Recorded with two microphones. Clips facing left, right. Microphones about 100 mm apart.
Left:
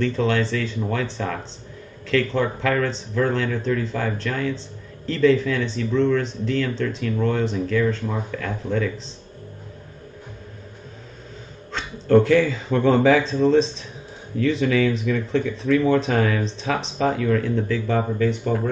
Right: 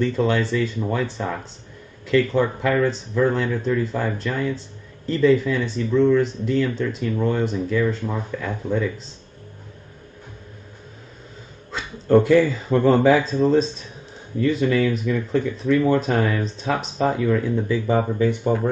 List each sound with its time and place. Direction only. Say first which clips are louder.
0.0 s speech: right 1 dB; 10° right (ahead or behind)
11.7 s speech: even; 10° right (ahead or behind)